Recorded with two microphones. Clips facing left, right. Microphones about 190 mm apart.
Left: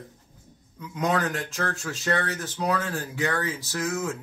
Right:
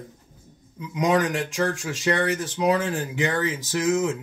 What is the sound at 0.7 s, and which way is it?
A man's voice, 15° right (ahead or behind).